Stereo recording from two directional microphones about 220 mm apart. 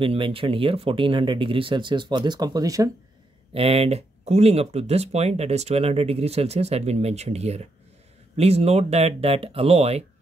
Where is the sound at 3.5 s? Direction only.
25° right (ahead or behind).